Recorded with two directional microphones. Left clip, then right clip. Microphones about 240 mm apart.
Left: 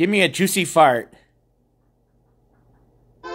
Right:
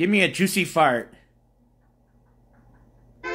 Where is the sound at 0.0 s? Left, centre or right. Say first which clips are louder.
Left 3 dB; centre.